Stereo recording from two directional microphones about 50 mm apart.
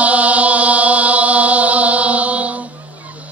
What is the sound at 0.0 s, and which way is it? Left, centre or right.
Chant, right.